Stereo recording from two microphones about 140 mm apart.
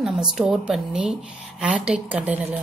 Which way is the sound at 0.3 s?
5° right (ahead or behind).